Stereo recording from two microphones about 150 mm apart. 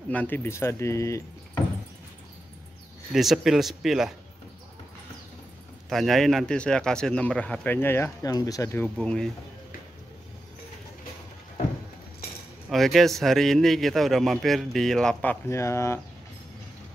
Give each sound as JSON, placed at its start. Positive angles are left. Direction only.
{"t": 0.1, "sound": "a man's voice", "side_deg": 10}
{"t": 3.1, "sound": "a man's voice", "side_deg": 0}
{"t": 5.9, "sound": "a man's voice", "side_deg": 0}
{"t": 12.6, "sound": "a man's voice", "side_deg": 0}
{"t": 15.4, "sound": "a man's voice", "side_deg": 20}